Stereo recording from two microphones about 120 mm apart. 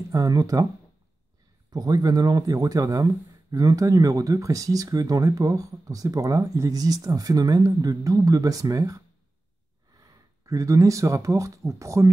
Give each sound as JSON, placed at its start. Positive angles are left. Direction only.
{"t": 0.1, "sound": "speech", "side_deg": -30}
{"t": 1.7, "sound": "speech", "side_deg": -30}